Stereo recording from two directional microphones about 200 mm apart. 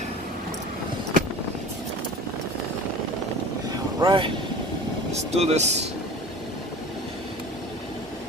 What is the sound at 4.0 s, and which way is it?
Vehicle, 25° right (ahead or behind).